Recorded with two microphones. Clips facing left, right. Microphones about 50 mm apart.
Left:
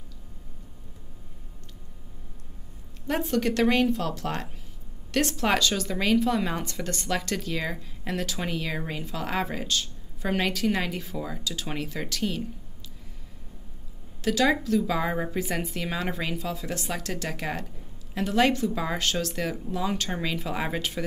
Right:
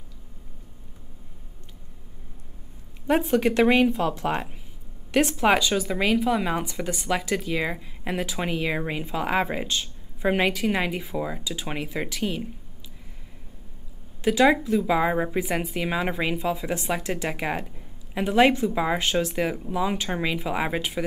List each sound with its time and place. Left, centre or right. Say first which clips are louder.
3.1 s speech: right 5 dB; centre
14.2 s speech: right 4 dB; centre